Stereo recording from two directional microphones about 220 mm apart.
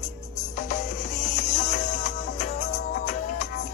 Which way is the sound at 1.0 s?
30° left (ahead or behind).